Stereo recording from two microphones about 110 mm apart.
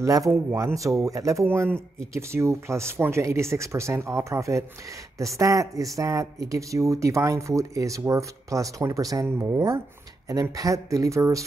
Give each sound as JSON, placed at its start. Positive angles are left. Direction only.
{"t": 0.0, "sound": "speech", "side_deg": -30}